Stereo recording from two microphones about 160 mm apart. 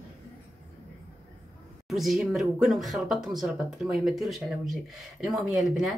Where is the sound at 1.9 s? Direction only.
Centre (ahead or behind).